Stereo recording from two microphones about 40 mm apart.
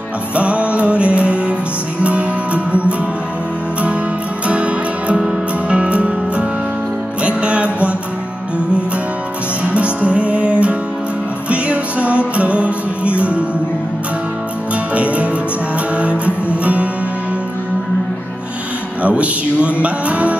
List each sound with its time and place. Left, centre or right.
0.4 s music: right
4.5 s music: right
9.8 s music: right
15.0 s music: right
16.4 s music: right
19.0 s music: right